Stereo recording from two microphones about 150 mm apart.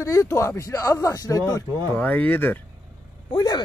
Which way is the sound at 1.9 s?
10° left (ahead or behind).